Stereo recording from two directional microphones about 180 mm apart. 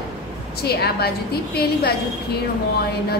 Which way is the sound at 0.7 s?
60° left (ahead or behind).